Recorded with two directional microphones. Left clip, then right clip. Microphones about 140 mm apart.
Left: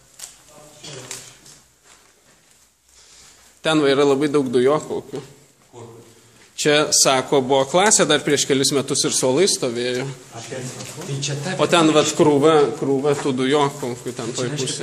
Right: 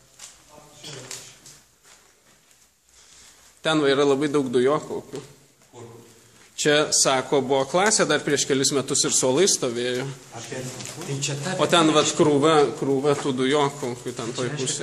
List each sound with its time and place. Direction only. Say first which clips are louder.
3.6 s a man's voice: left 3 dB; 5° left (ahead or behind)
6.5 s speech: left 3 dB; 5° left (ahead or behind)
11.1 s speech: left 3 dB; 40° right (ahead or behind)
11.5 s a man's voice: left 3 dB; centre (ahead or behind)
13.3 s a man's voice: left 3 dB; 5° left (ahead or behind)